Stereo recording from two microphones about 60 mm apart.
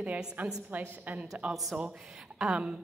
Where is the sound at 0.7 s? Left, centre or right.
Right.